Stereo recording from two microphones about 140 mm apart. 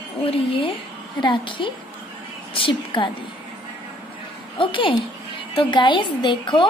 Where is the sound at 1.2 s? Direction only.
35° left (ahead or behind).